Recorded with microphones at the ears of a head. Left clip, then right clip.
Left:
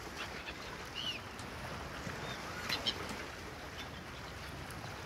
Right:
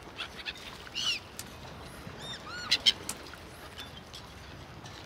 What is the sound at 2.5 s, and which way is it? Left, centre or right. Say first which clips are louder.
Bird: right 11 dB; right.